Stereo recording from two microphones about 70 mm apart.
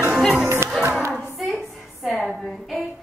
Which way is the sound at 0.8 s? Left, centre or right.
Right.